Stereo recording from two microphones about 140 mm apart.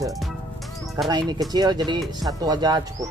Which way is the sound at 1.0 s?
30° right (ahead or behind).